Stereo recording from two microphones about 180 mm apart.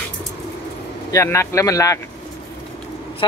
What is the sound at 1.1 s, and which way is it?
Speech, 15° left (ahead or behind).